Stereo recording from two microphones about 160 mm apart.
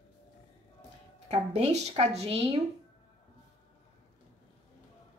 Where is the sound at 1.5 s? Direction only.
45° right (ahead or behind).